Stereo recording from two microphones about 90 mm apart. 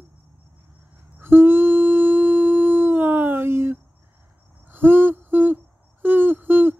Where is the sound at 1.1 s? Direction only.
25° right (ahead or behind).